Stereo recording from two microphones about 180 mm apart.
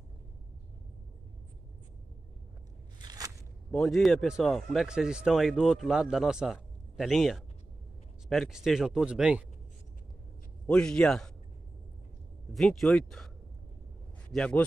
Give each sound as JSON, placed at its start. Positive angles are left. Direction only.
{"t": 3.0, "sound": "crunch", "side_deg": -20}
{"t": 3.7, "sound": "speech", "side_deg": 0}
{"t": 10.7, "sound": "speech", "side_deg": 5}
{"t": 12.5, "sound": "speech", "side_deg": 0}
{"t": 14.3, "sound": "a man's voice", "side_deg": 5}